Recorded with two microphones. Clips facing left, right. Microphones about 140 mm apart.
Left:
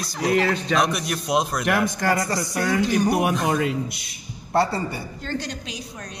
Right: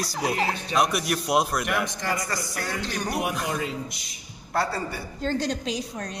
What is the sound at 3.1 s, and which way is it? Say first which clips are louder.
Speech: left 7 dB; 50° left (ahead or behind).